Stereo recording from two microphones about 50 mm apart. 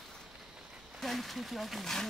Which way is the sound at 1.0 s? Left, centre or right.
Centre.